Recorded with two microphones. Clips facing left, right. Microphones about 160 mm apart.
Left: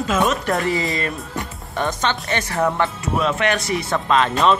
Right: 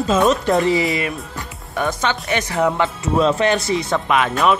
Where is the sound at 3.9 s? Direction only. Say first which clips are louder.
Left 2 dB; 15° right (ahead or behind).